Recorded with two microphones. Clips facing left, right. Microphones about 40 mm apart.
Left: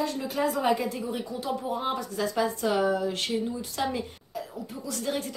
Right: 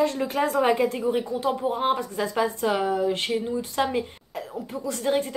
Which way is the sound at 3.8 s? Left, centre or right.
Right.